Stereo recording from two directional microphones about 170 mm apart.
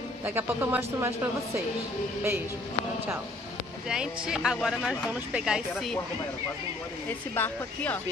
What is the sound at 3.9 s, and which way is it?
Speech, 5° right (ahead or behind).